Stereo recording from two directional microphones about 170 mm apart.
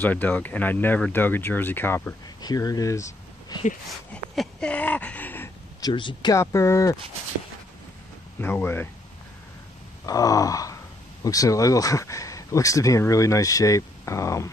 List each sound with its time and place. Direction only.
0.0 s speech: 10° left (ahead or behind)
3.1 s a sound: 25° left (ahead or behind)
4.1 s speech: 5° left (ahead or behind)
5.8 s speech: 25° left (ahead or behind)
8.4 s speech: 10° left (ahead or behind)
10.0 s groan: 20° left (ahead or behind)
11.2 s speech: 20° left (ahead or behind)